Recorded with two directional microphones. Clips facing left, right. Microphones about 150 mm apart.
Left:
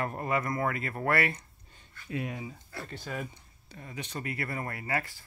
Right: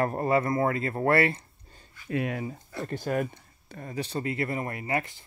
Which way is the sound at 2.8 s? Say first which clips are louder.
Right 10 dB; 50° right (ahead or behind).